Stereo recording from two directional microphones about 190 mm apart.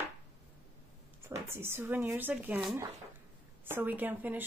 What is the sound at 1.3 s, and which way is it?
Speech, 10° right (ahead or behind).